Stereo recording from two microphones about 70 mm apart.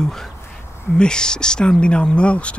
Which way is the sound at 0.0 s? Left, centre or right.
Centre.